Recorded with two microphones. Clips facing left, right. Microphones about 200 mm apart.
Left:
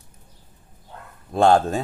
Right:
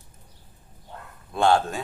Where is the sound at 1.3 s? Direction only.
40° left (ahead or behind).